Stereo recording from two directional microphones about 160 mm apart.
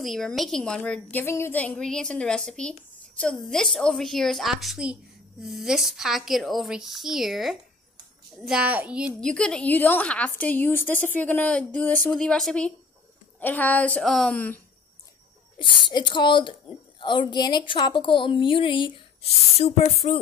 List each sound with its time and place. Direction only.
0.0 s a woman's voice: centre (ahead or behind)
9.2 s speech: 5° left (ahead or behind)
15.6 s a woman's voice: 30° left (ahead or behind)